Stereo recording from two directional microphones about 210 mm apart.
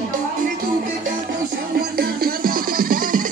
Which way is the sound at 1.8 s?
45° right (ahead or behind).